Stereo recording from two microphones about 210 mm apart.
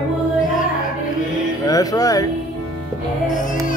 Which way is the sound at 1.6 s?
15° left (ahead or behind).